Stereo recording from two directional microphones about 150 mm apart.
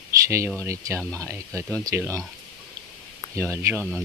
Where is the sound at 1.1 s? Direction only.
15° right (ahead or behind).